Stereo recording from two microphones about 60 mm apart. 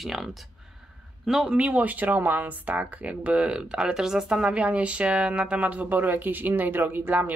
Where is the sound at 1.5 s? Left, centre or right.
Centre.